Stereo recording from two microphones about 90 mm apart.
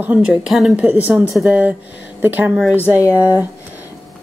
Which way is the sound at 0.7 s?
20° right (ahead or behind).